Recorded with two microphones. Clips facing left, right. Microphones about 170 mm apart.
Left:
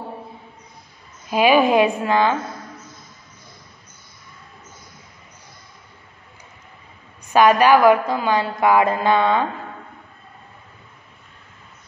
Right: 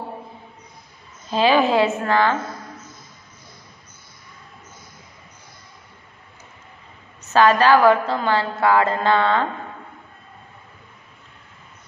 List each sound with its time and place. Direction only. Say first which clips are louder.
1.3 s a woman's voice: left 2 dB; 15° left (ahead or behind)
7.2 s a woman's voice: left 1 dB; 15° left (ahead or behind)